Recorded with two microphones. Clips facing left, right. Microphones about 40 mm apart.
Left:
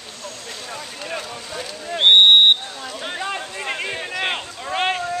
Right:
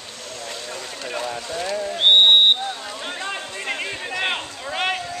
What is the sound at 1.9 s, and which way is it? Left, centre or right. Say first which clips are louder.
Speech: left 3 dB; left.